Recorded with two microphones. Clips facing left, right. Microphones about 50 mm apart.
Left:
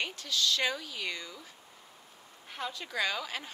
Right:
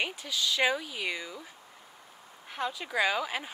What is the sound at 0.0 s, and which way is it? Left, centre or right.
Speech, centre.